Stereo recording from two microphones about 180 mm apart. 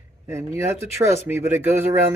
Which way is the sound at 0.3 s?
15° right (ahead or behind).